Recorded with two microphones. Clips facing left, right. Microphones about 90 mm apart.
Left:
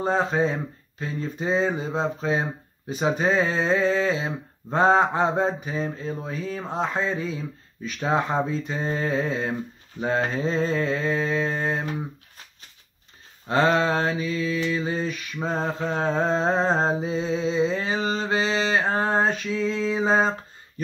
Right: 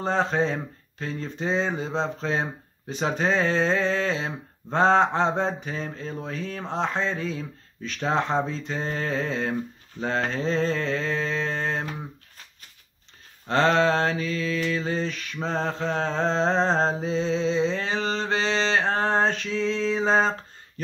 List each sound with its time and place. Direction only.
0.0 s speech: 5° left (ahead or behind)
13.5 s speech: 10° left (ahead or behind)